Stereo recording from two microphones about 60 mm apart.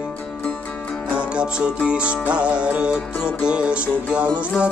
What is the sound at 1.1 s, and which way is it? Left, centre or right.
Music, centre.